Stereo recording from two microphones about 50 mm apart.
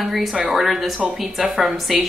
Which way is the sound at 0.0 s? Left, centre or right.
Centre.